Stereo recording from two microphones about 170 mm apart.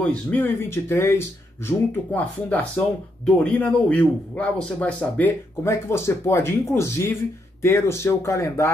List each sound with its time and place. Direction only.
0.0 s a man's voice: 5° left (ahead or behind)